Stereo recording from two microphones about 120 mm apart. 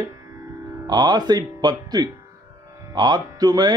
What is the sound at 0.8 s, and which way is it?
A man's voice, 35° right (ahead or behind).